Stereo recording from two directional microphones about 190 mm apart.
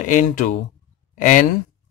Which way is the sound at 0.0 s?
45° left (ahead or behind).